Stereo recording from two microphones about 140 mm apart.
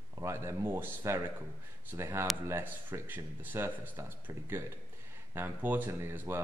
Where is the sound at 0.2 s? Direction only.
20° right (ahead or behind).